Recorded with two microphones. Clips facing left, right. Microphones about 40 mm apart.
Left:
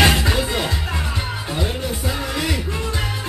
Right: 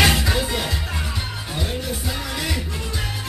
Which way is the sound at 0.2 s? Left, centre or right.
Centre.